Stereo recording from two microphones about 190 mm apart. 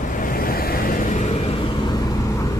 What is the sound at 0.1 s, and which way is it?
Vehicle, 45° left (ahead or behind).